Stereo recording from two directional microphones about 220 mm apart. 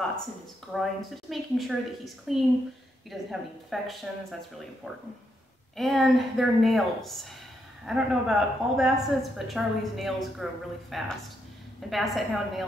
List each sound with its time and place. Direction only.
0.7 s a woman's voice: centre (ahead or behind)
5.8 s a woman's voice: centre (ahead or behind)